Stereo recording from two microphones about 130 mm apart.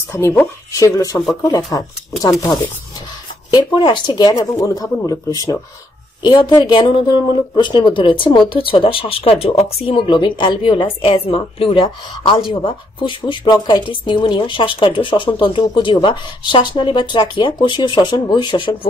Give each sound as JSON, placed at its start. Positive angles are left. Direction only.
{"t": 0.1, "sound": "speech", "side_deg": 15}
{"t": 3.5, "sound": "speech", "side_deg": 35}